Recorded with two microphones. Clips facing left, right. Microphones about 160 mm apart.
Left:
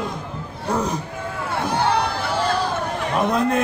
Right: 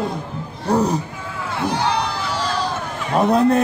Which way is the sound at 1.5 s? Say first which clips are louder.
Even; 55° left (ahead or behind).